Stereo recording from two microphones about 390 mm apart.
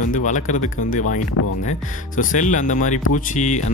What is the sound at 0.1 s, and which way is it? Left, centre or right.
Speech, centre.